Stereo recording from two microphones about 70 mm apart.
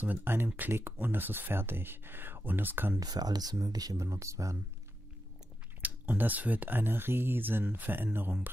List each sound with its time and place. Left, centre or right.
0.0 s speech: right
3.0 s speech: right
5.8 s speech: right